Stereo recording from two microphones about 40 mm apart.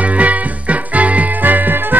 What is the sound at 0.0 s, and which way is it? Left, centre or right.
Music, right.